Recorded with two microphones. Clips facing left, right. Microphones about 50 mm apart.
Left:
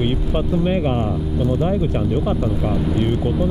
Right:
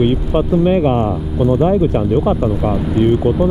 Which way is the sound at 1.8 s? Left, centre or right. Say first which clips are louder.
Right 6 dB; centre.